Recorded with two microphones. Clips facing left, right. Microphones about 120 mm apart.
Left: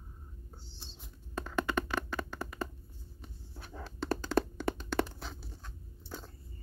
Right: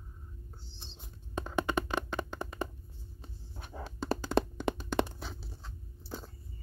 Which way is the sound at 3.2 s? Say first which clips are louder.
Right 1 dB; 20° right (ahead or behind).